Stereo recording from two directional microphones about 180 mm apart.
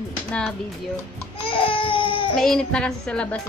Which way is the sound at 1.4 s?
30° left (ahead or behind).